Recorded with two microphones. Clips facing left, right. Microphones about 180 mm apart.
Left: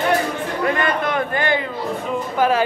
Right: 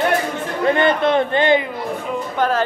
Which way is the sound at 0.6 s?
30° right (ahead or behind).